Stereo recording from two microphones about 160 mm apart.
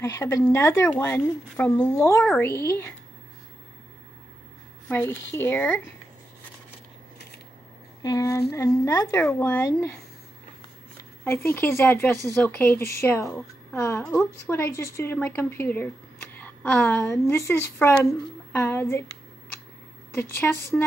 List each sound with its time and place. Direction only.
0.0 s a woman's voice: 20° left (ahead or behind)
4.8 s a woman's voice: 10° left (ahead or behind)
8.0 s a woman's voice: 20° left (ahead or behind)
11.2 s a woman's voice: 15° left (ahead or behind)
20.2 s a woman's voice: 15° left (ahead or behind)